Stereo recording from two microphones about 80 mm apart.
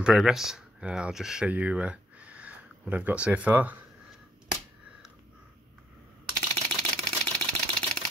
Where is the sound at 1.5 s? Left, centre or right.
Centre.